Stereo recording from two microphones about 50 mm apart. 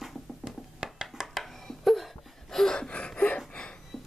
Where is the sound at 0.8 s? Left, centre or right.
Centre.